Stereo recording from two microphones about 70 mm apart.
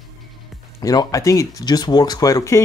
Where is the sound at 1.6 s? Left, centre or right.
Left.